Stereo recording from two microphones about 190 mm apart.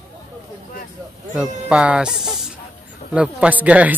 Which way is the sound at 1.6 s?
5° right (ahead or behind).